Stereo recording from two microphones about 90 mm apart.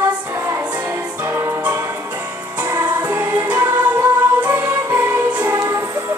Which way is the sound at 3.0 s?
20° right (ahead or behind).